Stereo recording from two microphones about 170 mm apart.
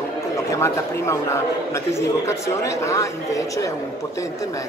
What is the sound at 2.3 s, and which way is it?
Speech, 15° left (ahead or behind).